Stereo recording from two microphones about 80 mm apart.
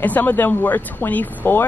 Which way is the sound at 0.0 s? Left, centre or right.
Left.